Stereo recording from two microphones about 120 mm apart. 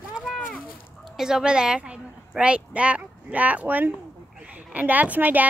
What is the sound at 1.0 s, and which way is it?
A woman's voice, 5° right (ahead or behind).